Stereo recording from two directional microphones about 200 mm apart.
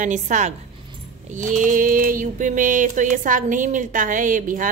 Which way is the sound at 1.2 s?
40° right (ahead or behind).